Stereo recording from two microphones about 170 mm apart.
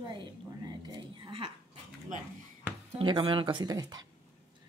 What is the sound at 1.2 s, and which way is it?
Dog, 35° right (ahead or behind).